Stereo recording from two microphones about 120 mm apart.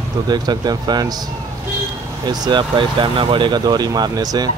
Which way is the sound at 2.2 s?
40° right (ahead or behind).